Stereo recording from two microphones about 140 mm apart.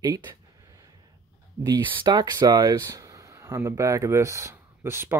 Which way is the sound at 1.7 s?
30° right (ahead or behind).